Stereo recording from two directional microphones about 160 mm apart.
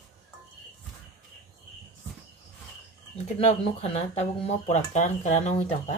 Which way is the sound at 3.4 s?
45° left (ahead or behind).